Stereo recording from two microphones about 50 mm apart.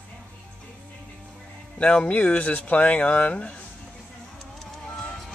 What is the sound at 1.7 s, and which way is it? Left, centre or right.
Speech, left.